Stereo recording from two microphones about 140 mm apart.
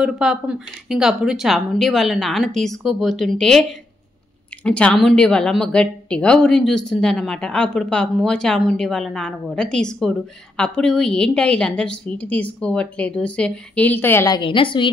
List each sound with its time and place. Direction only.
0.0 s a woman's voice: 5° right (ahead or behind)
4.6 s a woman's voice: 5° left (ahead or behind)
14.3 s a woman's voice: 35° left (ahead or behind)